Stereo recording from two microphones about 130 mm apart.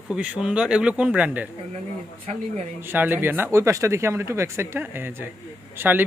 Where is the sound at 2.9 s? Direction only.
15° right (ahead or behind).